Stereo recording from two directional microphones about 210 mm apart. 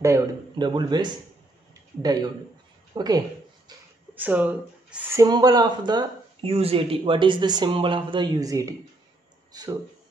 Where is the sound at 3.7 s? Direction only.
20° right (ahead or behind).